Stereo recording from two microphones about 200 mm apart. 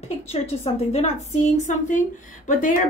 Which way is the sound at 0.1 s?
35° left (ahead or behind).